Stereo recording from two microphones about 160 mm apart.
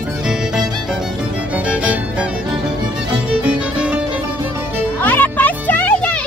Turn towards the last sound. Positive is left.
turn(degrees=10)  # may be behind; listen again after turning